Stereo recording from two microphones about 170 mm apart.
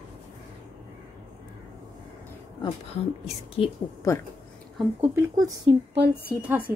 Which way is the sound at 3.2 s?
35° left (ahead or behind).